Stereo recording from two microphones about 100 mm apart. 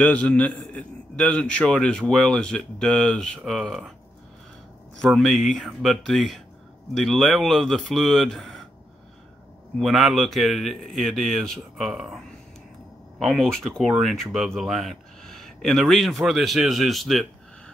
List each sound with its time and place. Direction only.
0.0 s a man's voice: 15° left (ahead or behind)
5.0 s speech: centre (ahead or behind)
9.8 s speech: centre (ahead or behind)
13.2 s speech: 5° left (ahead or behind)